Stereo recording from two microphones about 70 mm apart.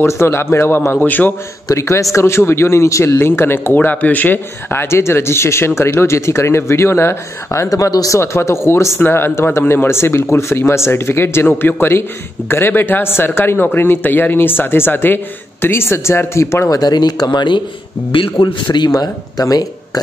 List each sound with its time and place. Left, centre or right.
0.0 s a man's voice: left
0.9 s a man's voice: left
1.7 s a man's voice: left
3.2 s a man's voice: left
7.7 s speech: left
8.2 s a man's voice: left
16.6 s speech: left
18.8 s speech: left